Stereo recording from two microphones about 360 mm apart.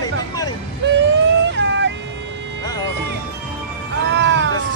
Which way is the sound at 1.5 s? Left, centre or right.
Right.